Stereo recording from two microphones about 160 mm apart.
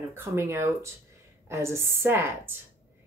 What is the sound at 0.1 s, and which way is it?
Speech, 15° right (ahead or behind).